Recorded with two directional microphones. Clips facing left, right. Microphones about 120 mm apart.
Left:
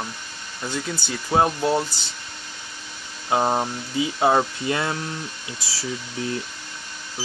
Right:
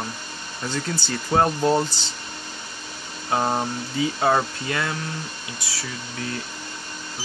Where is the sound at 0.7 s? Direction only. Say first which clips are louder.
Right 1 dB; 10° left (ahead or behind).